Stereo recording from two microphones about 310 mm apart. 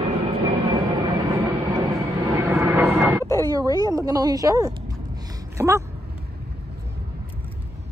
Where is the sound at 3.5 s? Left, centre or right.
Centre.